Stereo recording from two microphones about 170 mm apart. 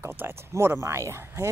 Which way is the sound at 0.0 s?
15° right (ahead or behind).